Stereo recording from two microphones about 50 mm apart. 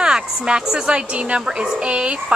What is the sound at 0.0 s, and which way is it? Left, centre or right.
A woman's voice, centre.